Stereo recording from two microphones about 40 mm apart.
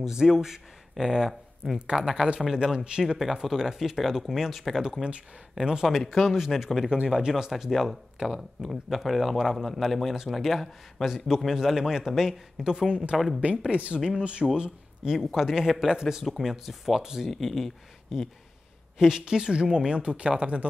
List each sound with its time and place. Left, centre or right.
0.0 s a man's voice: centre
4.8 s speech: right
5.9 s a man's voice: centre
7.1 s a man's voice: centre
12.6 s speech: centre
13.1 s a man's voice: centre
13.7 s speech: right
14.4 s a man's voice: centre
17.3 s a man's voice: centre
18.9 s speech: centre; by 20.6 s right